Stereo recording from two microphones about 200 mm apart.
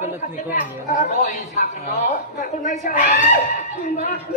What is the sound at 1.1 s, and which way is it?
A woman's voice, 40° left (ahead or behind).